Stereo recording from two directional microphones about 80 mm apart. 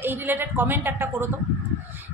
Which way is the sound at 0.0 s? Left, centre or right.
Right.